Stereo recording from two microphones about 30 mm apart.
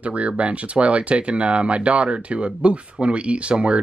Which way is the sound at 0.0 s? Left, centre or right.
Right.